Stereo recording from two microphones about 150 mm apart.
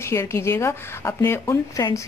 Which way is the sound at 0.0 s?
20° left (ahead or behind).